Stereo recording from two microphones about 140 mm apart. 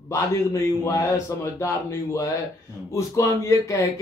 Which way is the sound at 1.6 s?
25° left (ahead or behind).